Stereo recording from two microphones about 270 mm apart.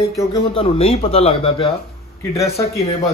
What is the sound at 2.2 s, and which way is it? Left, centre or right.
Speech, centre.